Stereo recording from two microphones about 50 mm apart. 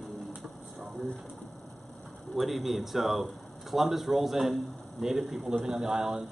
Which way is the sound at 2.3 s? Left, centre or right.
Centre.